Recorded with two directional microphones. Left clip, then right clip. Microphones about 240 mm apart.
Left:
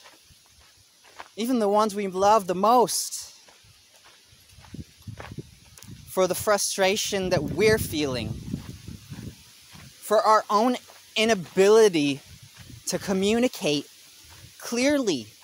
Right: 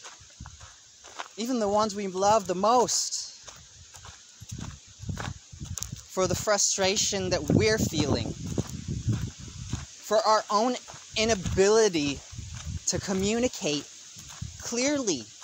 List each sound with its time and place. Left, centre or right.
1.3 s speech: left
5.8 s a sound: right
6.1 s speech: left
10.0 s speech: left